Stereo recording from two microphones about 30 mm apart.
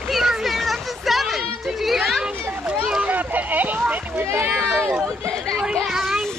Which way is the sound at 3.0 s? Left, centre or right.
Right.